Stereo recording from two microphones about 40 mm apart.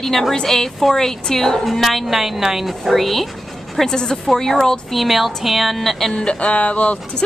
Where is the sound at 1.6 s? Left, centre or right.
Centre.